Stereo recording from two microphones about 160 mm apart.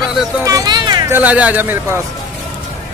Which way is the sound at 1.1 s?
10° right (ahead or behind).